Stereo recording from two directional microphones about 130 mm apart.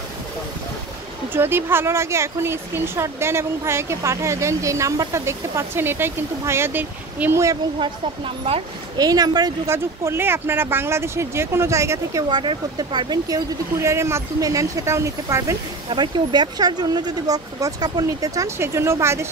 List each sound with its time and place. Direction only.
1.3 s speech: 15° right (ahead or behind)
8.9 s speech: 30° right (ahead or behind)
9.7 s speech: 20° right (ahead or behind)
15.9 s speech: 35° right (ahead or behind); by 19.2 s 20° right (ahead or behind)